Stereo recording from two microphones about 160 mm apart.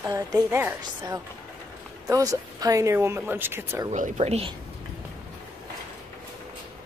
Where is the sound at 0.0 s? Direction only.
20° right (ahead or behind).